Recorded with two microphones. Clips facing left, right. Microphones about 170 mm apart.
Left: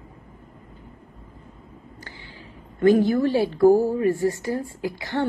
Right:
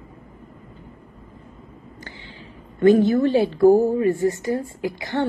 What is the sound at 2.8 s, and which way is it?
A woman's voice, 25° right (ahead or behind).